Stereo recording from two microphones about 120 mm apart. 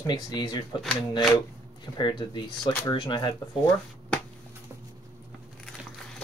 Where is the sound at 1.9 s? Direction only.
40° left (ahead or behind).